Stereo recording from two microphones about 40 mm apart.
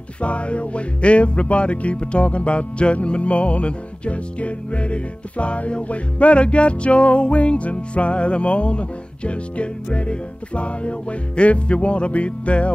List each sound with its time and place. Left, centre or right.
0.2 s music: left